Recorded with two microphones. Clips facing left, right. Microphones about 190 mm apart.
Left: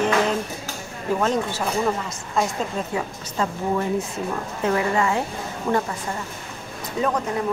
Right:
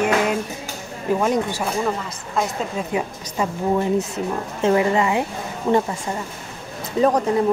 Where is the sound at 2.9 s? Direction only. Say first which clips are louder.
Right 3 dB; 20° right (ahead or behind).